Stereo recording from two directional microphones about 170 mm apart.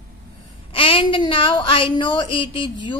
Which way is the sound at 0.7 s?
35° left (ahead or behind).